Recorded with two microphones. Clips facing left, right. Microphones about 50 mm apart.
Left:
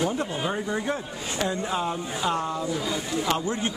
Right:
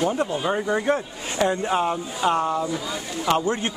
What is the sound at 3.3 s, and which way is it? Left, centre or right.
Speech, right.